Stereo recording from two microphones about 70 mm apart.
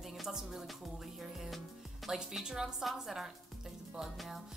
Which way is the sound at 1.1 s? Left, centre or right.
Centre.